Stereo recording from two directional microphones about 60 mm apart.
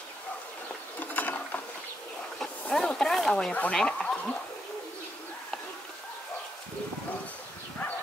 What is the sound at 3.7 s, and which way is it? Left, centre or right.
Speech, centre.